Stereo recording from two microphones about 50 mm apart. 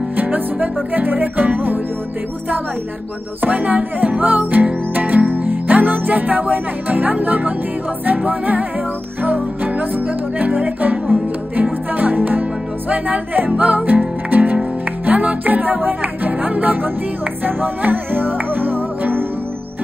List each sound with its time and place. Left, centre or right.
0.2 s music: right
3.4 s music: right
12.0 s speech: right
12.9 s music: right